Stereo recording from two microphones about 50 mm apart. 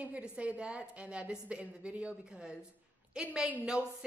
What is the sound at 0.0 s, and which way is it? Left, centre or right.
A woman's voice, right.